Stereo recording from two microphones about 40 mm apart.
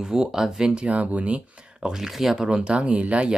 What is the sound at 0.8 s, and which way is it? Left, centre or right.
Speech, right.